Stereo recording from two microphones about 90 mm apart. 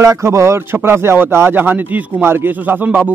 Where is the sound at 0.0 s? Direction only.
35° right (ahead or behind).